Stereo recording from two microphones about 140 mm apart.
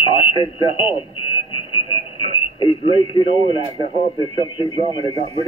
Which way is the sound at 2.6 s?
35° left (ahead or behind).